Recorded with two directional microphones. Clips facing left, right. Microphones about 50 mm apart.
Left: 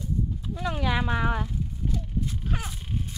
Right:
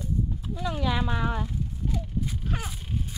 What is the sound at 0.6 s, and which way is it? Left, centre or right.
Speech, left.